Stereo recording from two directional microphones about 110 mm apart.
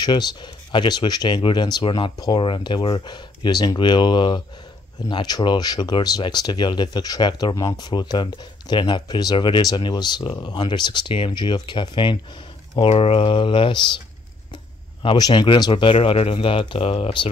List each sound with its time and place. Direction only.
0.0 s speech: 40° left (ahead or behind)
12.8 s speech: 65° left (ahead or behind); by 13.9 s 45° left (ahead or behind)
15.0 s speech: 40° left (ahead or behind)